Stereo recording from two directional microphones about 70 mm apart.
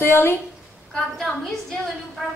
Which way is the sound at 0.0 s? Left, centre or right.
Left.